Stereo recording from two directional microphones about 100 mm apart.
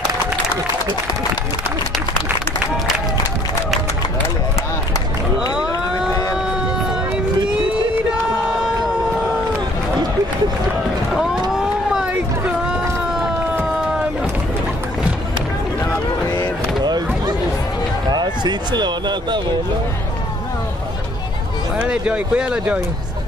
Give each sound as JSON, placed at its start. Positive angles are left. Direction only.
{"t": 11.5, "sound": "run", "side_deg": -10}
{"t": 15.8, "sound": "a sound", "side_deg": 40}
{"t": 18.1, "sound": "speech", "side_deg": -45}
{"t": 21.7, "sound": "speech", "side_deg": -10}